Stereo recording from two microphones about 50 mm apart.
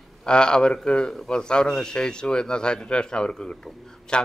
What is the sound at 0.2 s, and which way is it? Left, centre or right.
Speech, centre.